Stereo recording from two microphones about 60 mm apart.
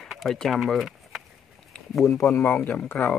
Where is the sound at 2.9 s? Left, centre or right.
Left.